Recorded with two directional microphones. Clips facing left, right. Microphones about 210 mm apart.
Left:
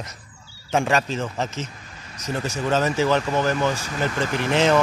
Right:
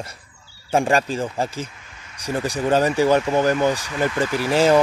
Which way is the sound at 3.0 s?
15° right (ahead or behind).